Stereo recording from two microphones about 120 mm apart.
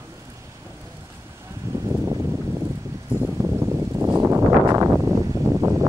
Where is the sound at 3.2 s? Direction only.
15° right (ahead or behind).